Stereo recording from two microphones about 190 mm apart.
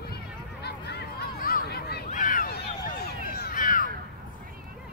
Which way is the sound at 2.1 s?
45° left (ahead or behind).